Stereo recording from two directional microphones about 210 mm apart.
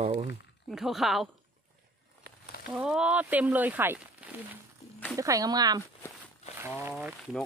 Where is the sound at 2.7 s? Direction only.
5° right (ahead or behind).